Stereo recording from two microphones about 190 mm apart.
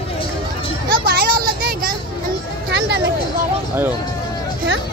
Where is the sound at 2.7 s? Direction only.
65° right (ahead or behind).